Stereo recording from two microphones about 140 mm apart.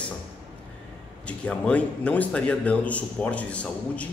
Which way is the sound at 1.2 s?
10° left (ahead or behind).